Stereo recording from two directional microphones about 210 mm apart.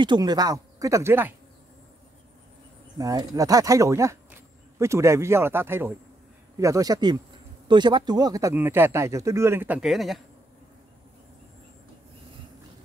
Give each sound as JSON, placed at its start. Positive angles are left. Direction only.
{"t": 0.0, "sound": "speech", "side_deg": -20}
{"t": 3.0, "sound": "speech", "side_deg": -15}